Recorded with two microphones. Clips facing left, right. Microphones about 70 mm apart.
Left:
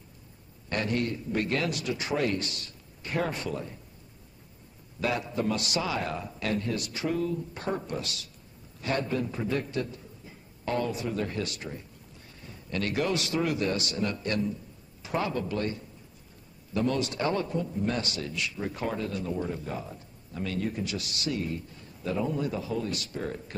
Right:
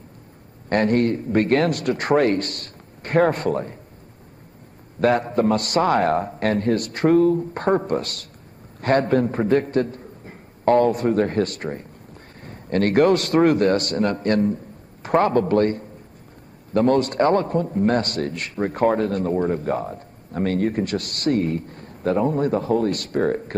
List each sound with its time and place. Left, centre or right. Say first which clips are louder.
0.7 s a man's voice: right 11 dB; right
5.0 s a man's voice: right 11 dB; right